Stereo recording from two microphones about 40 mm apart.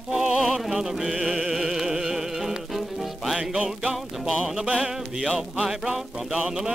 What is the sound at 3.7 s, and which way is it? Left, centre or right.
Music, centre.